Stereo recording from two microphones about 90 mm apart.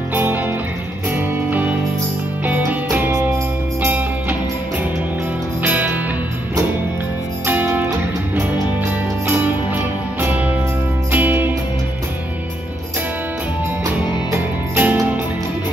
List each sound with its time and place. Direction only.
0.1 s music: 20° right (ahead or behind)
5.6 s music: 20° right (ahead or behind)
7.4 s music: 20° right (ahead or behind)
10.2 s music: 15° right (ahead or behind)
14.8 s music: 20° right (ahead or behind)